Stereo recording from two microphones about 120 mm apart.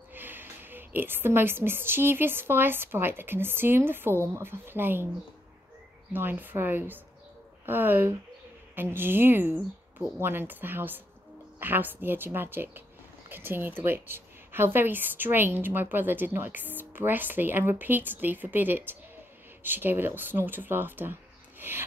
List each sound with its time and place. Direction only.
0.1 s a woman's voice: 15° right (ahead or behind)
6.1 s a woman's voice: 15° right (ahead or behind)